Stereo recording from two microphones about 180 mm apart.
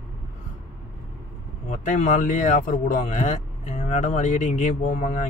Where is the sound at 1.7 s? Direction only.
45° left (ahead or behind).